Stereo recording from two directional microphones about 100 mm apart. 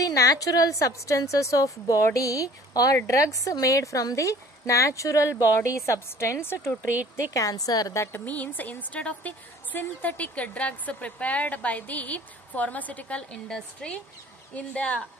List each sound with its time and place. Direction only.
0.0 s a woman's voice: 35° left (ahead or behind)
8.3 s a woman's voice: 15° left (ahead or behind)